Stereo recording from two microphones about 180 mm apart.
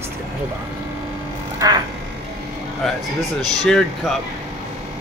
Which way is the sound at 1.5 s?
20° right (ahead or behind).